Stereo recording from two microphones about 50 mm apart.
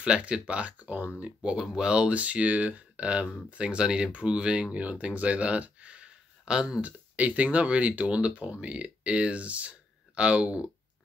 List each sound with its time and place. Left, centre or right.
0.0 s speech: centre
6.8 s speech: right